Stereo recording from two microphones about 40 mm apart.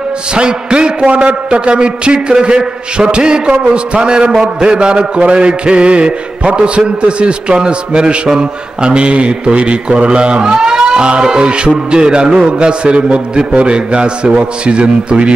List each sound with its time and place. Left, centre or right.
0.3 s a man's voice: right